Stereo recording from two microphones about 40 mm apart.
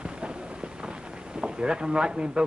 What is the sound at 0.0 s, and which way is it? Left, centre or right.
A man's voice, right.